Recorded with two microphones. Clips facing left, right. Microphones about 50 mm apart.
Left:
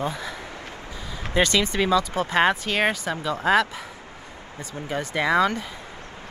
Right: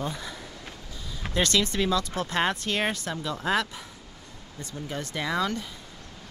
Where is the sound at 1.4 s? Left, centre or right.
Centre.